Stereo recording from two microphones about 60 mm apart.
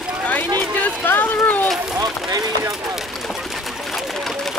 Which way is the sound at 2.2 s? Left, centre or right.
Right.